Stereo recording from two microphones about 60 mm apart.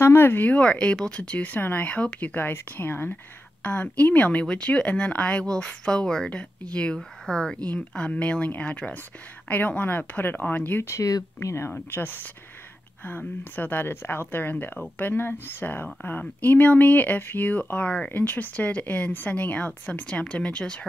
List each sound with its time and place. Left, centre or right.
0.0 s speech: left
0.5 s speech: left
3.6 s speech: left
10.7 s speech: left
11.0 s speech: left
11.4 s speech: left
11.9 s speech: left
13.4 s speech: left; by 20.8 s centre